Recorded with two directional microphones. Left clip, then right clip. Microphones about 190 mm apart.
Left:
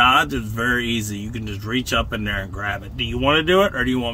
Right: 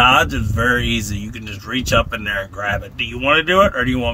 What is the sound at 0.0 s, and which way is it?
Speech, 25° right (ahead or behind).